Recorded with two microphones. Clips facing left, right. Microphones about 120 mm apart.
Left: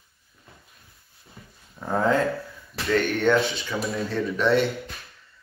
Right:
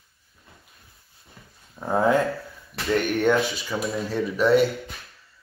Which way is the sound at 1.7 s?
20° right (ahead or behind).